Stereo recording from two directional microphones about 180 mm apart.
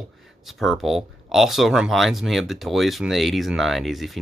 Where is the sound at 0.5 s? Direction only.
Centre (ahead or behind).